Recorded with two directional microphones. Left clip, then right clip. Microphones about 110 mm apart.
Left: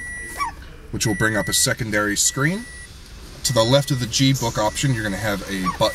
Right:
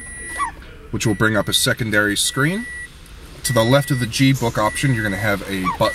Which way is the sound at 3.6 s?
40° right (ahead or behind).